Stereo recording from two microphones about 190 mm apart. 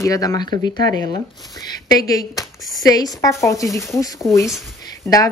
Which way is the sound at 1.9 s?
20° left (ahead or behind).